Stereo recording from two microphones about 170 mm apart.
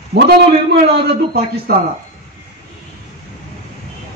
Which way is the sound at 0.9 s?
70° right (ahead or behind).